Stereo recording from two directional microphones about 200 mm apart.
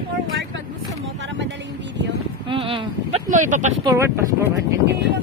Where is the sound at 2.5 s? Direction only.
25° right (ahead or behind).